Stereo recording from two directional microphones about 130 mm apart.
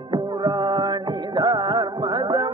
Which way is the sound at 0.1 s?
35° right (ahead or behind).